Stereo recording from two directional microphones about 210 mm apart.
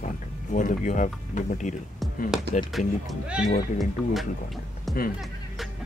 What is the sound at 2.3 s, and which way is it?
Speech, 5° right (ahead or behind).